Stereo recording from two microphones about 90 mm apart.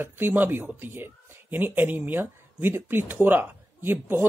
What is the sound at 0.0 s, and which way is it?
Speech, 25° right (ahead or behind).